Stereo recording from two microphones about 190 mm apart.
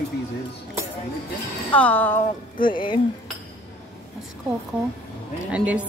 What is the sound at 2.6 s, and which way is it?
Speech, 25° left (ahead or behind).